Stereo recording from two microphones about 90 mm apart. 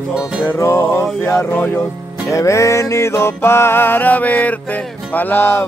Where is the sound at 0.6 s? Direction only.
30° left (ahead or behind).